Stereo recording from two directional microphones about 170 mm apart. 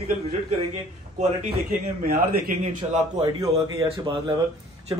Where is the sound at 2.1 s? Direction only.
55° right (ahead or behind).